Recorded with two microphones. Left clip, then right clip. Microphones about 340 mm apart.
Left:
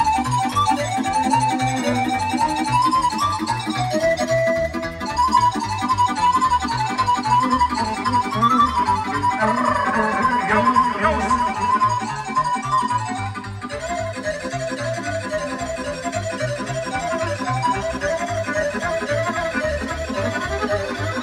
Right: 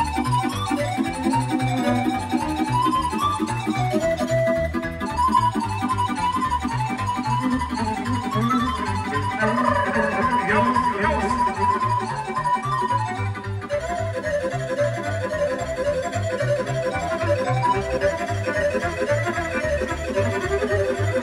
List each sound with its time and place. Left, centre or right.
0.0 s music: left
3.9 s music: left
8.4 s music: centre